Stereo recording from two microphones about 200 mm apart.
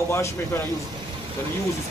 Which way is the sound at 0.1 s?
15° left (ahead or behind).